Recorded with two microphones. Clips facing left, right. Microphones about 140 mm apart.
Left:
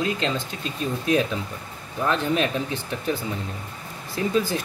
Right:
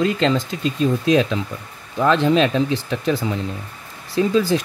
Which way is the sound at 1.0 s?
90° right.